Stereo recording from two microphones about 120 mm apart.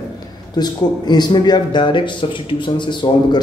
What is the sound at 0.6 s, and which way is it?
A man's voice, 35° left (ahead or behind).